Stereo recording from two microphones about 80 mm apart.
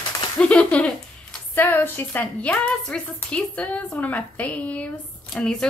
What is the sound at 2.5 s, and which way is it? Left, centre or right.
Speech, centre.